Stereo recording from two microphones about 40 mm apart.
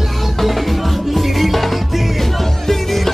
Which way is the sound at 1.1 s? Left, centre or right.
Centre.